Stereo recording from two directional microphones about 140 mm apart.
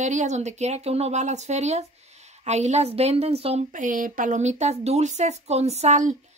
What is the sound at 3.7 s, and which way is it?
Speech, 65° right (ahead or behind).